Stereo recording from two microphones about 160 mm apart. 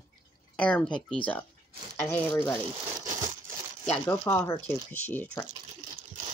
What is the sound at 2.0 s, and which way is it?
Speech, 10° left (ahead or behind).